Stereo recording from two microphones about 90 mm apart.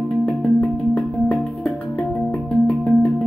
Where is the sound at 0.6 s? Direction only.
15° left (ahead or behind).